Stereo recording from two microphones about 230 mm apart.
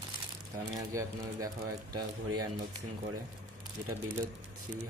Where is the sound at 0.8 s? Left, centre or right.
Centre.